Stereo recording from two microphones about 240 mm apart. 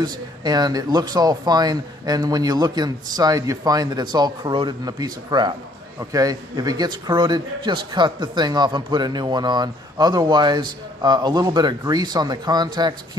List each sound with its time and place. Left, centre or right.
0.0 s speech: centre